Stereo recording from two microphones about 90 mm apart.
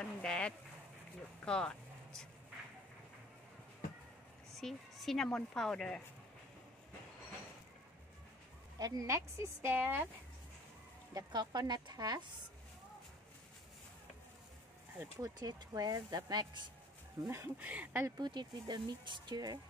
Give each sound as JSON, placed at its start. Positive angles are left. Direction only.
{"t": 0.0, "sound": "a sound", "side_deg": 10}
{"t": 4.6, "sound": "a woman's voice", "side_deg": 5}
{"t": 8.7, "sound": "a woman's voice", "side_deg": -45}
{"t": 11.1, "sound": "speech", "side_deg": -50}
{"t": 15.2, "sound": "speech", "side_deg": -45}
{"t": 17.6, "sound": "speech", "side_deg": -15}
{"t": 17.9, "sound": "a woman's voice", "side_deg": -35}
{"t": 18.2, "sound": "speech", "side_deg": -55}